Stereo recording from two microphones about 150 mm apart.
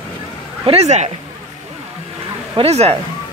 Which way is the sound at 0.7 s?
45° right (ahead or behind).